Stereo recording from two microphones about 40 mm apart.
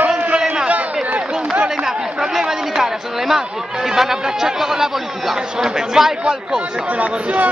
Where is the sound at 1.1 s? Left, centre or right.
Right.